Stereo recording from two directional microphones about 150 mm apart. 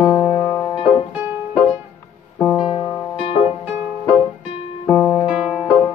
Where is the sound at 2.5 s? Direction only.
30° left (ahead or behind).